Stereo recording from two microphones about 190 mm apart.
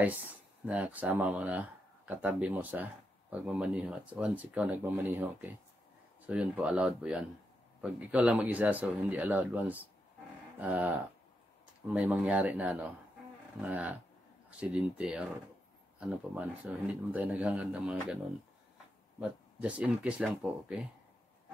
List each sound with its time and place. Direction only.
0.0 s speech: 10° right (ahead or behind)